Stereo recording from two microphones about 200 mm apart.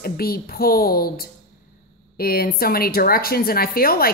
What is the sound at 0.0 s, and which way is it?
A woman's voice, 50° left (ahead or behind).